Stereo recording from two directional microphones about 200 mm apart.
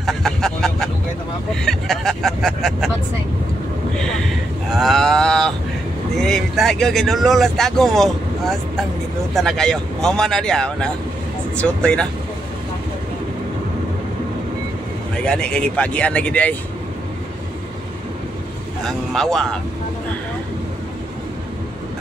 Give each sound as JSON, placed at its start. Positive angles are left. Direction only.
{"t": 0.0, "sound": "vehicle", "side_deg": 0}
{"t": 1.5, "sound": "speech", "side_deg": 0}
{"t": 4.6, "sound": "speech", "side_deg": 0}
{"t": 15.2, "sound": "speech", "side_deg": 5}
{"t": 18.9, "sound": "speech", "side_deg": 0}